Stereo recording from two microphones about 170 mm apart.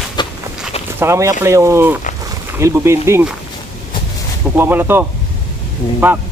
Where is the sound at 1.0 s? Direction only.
15° right (ahead or behind).